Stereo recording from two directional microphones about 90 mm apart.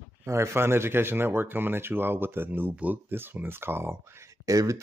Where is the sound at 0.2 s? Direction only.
30° right (ahead or behind).